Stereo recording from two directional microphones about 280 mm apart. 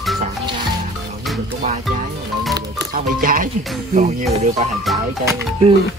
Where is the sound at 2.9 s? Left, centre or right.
Right.